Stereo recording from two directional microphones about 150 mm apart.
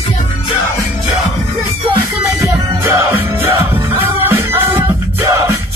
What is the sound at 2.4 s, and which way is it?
Music, 15° right (ahead or behind).